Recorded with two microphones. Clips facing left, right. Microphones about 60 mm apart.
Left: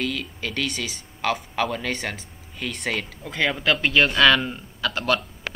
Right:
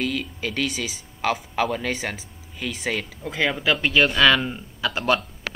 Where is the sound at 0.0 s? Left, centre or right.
Centre.